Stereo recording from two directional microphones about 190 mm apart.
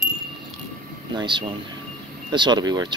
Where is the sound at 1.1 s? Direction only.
25° right (ahead or behind).